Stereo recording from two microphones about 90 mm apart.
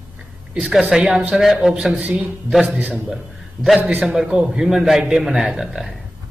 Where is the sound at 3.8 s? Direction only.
20° right (ahead or behind).